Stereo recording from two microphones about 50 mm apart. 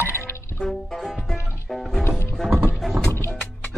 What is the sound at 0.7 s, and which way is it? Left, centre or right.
Music, centre.